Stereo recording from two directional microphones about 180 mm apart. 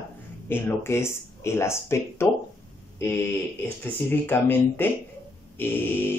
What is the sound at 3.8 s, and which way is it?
A man's voice, 10° left (ahead or behind).